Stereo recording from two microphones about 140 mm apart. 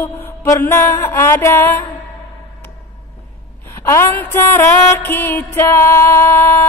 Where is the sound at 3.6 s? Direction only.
20° left (ahead or behind).